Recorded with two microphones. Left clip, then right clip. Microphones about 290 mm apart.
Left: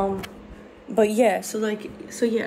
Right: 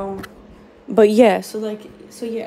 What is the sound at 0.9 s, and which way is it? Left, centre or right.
Speech, right.